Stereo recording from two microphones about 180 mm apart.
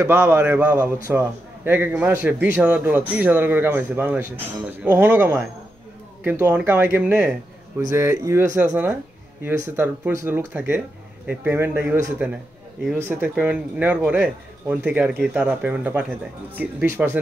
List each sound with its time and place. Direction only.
0.0 s a man's voice: 15° right (ahead or behind)